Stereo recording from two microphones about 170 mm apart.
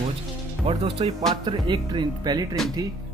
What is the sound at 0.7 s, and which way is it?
Speech, 35° right (ahead or behind).